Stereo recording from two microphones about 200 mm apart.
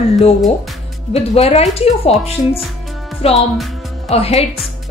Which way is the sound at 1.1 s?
30° left (ahead or behind).